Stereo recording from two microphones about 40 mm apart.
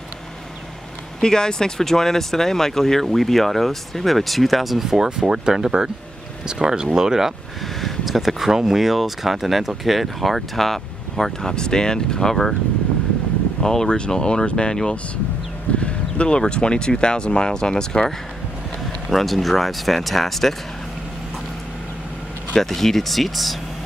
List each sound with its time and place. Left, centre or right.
1.2 s speech: centre
7.8 s speech: centre
11.5 s speech: centre
13.6 s speech: centre
19.0 s speech: centre
22.6 s speech: centre